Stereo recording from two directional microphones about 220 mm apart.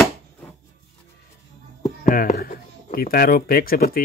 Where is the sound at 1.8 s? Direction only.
35° left (ahead or behind).